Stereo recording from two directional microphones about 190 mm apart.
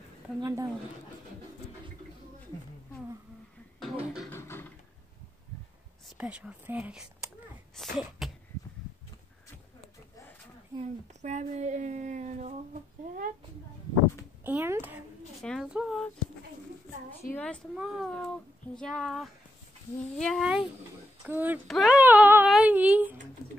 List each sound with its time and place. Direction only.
0.4 s speech: 20° right (ahead or behind)
3.8 s beatboxing: centre (ahead or behind)
4.3 s beatboxing: 10° left (ahead or behind)
6.0 s speech: 5° right (ahead or behind)
7.7 s sneeze: centre (ahead or behind)
10.8 s a woman's voice: 40° right (ahead or behind)
14.4 s speech: 10° right (ahead or behind)
15.4 s speech: centre (ahead or behind)
17.3 s speech: 5° left (ahead or behind)